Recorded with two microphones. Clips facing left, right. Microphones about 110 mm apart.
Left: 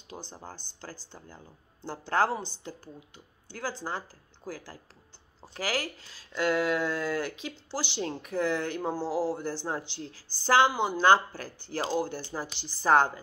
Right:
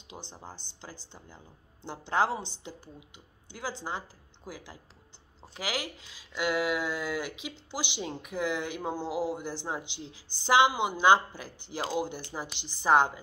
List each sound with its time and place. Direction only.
0.4 s speech: 20° right (ahead or behind)